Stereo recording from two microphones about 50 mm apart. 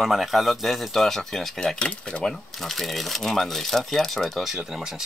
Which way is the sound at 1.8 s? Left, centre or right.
Left.